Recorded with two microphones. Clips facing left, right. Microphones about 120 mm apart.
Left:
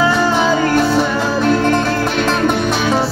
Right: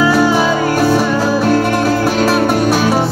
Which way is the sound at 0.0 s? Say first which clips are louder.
Right 2 dB; 10° right (ahead or behind).